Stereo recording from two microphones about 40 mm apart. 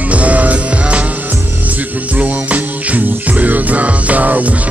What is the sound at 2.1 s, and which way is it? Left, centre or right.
Music, right.